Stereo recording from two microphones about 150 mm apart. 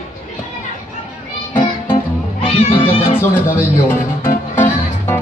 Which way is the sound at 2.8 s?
40° left (ahead or behind).